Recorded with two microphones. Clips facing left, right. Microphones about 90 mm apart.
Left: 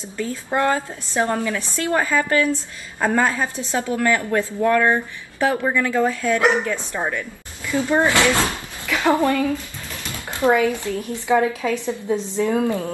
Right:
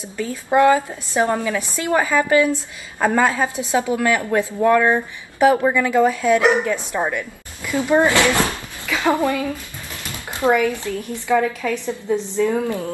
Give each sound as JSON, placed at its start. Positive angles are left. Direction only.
{"t": 0.2, "sound": "a woman's voice", "side_deg": -15}
{"t": 10.5, "sound": "a woman's voice", "side_deg": 20}